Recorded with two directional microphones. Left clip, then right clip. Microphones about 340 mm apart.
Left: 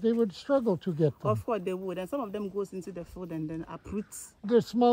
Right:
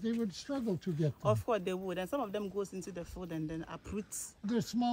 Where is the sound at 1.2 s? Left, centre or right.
Left.